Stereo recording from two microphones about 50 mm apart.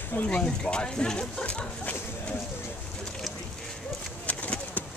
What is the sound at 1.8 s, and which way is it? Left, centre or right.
Dog, left.